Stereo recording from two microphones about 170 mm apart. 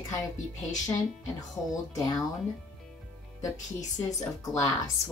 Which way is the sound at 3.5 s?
45° left (ahead or behind).